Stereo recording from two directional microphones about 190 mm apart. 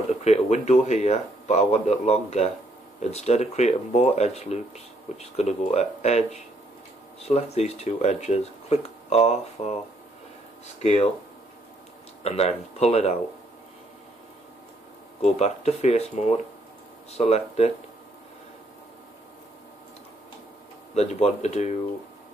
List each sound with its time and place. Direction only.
0.2 s speech: 35° left (ahead or behind)
10.8 s speech: 35° left (ahead or behind)
12.2 s speech: 35° left (ahead or behind)
15.2 s speech: 35° left (ahead or behind)
20.9 s speech: 35° left (ahead or behind)